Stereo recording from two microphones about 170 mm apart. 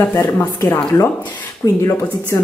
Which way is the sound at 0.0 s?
10° left (ahead or behind).